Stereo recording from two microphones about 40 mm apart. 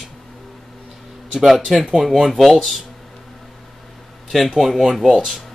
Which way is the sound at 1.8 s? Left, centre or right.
Centre.